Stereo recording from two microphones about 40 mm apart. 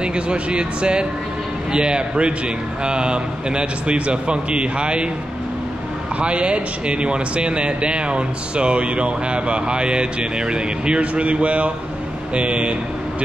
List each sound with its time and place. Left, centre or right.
0.0 s speech: right
6.1 s speech: right